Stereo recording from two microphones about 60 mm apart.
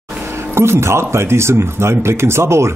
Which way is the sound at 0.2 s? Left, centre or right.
Right.